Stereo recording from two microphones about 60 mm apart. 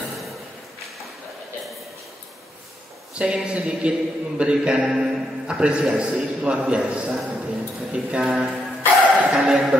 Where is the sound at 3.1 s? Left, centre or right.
Centre.